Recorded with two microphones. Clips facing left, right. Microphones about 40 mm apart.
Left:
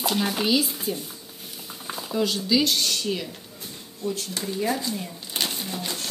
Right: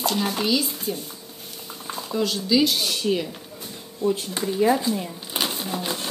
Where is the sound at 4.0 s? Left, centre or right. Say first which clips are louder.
Right 6 dB; right.